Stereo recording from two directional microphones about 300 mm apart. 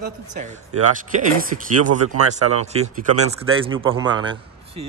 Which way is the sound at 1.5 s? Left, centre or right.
Right.